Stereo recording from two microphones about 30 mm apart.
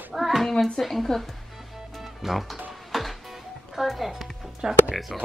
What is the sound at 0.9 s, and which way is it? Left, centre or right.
Speech, centre.